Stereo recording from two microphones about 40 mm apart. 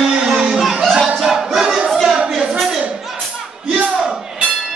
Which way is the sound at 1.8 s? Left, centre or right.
Centre.